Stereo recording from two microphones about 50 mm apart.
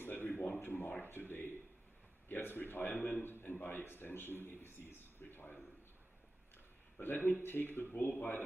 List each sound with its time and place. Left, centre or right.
0.0 s a sound: left
1.0 s a man's voice: left
7.0 s a man's voice: left